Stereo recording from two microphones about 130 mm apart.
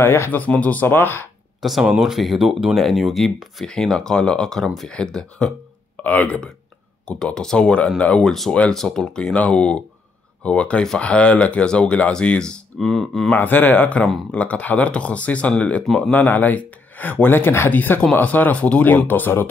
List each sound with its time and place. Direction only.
0.0 s speech: 15° left (ahead or behind)
1.6 s speech: centre (ahead or behind)
13.3 s speech: 15° left (ahead or behind)